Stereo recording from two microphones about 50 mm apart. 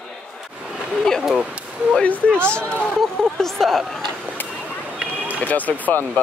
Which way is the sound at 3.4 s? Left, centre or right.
Centre.